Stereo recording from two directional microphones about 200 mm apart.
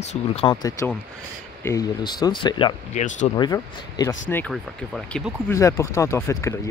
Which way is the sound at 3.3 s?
20° left (ahead or behind).